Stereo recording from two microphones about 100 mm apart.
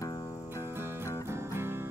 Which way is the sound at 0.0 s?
35° left (ahead or behind).